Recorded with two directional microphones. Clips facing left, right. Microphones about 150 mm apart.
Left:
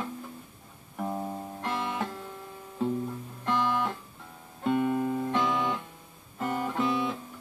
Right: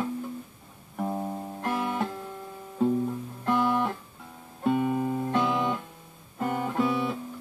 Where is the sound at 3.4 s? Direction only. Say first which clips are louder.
Right 3 dB; 5° right (ahead or behind).